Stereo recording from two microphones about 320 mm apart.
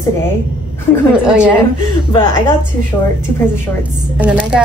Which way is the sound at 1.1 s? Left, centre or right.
Centre.